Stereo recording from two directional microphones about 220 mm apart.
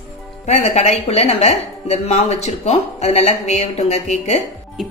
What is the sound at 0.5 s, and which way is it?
A woman's voice, 30° left (ahead or behind).